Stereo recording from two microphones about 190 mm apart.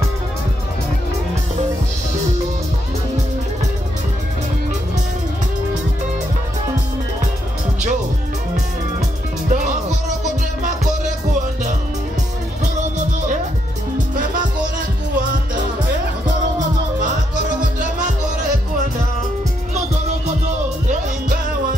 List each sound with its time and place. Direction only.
9.5 s music: 40° right (ahead or behind)
14.1 s music: 45° right (ahead or behind)